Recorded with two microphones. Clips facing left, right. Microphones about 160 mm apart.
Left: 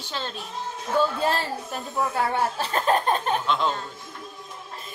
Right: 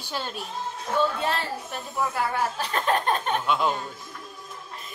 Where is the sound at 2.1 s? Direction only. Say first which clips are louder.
Left 2 dB; 30° left (ahead or behind).